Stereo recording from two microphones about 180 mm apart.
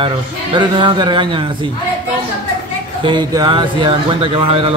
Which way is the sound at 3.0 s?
25° right (ahead or behind).